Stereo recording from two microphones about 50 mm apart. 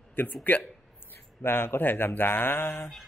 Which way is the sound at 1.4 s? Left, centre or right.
Left.